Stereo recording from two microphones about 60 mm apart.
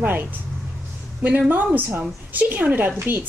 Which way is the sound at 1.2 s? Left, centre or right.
Right.